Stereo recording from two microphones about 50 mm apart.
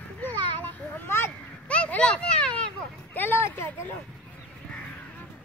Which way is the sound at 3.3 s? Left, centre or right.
Left.